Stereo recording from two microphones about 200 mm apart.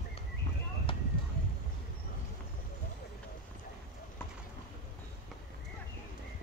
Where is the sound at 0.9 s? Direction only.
25° left (ahead or behind).